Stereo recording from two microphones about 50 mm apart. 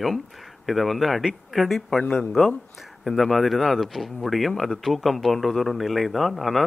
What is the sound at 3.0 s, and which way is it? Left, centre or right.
Speech, centre.